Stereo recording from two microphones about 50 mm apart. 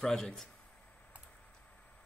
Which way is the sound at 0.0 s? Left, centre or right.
Centre.